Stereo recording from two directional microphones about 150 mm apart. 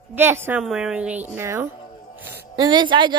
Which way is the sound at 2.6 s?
30° right (ahead or behind).